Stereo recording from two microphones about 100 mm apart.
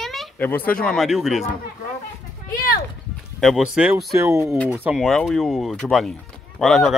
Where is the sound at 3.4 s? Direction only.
Centre (ahead or behind).